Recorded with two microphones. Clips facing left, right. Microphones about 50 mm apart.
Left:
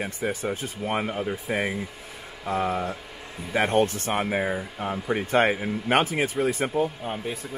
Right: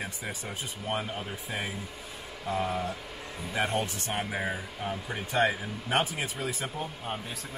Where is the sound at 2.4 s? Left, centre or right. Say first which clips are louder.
Left 4 dB; left.